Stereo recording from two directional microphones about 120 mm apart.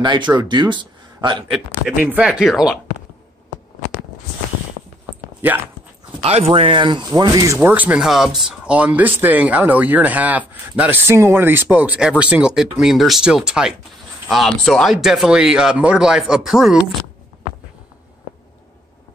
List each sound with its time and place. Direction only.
0.0 s speech: 40° right (ahead or behind)
1.5 s speech: 10° right (ahead or behind)
6.2 s speech: 55° right (ahead or behind); by 7.7 s 25° right (ahead or behind)
7.7 s speech: 10° right (ahead or behind)